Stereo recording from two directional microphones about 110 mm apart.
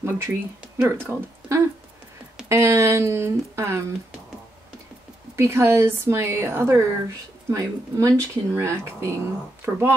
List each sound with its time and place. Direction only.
0.0 s speech: 25° right (ahead or behind)
5.3 s speech: 25° right (ahead or behind)